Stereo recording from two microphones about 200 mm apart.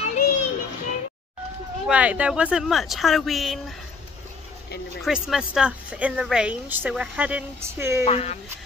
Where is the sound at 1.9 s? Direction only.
5° right (ahead or behind).